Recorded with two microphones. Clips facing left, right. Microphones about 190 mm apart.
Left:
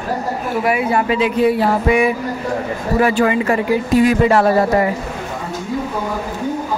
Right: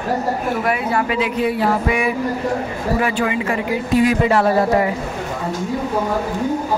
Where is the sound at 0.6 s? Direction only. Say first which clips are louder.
Left 6 dB; 10° left (ahead or behind).